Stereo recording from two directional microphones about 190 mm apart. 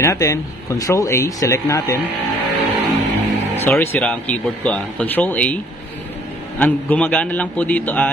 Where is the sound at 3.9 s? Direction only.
5° left (ahead or behind).